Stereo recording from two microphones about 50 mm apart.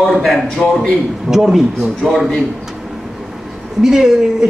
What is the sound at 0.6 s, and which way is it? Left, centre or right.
Speech, left.